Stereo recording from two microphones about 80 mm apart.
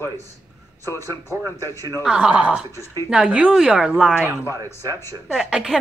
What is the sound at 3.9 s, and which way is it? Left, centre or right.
Speech, centre.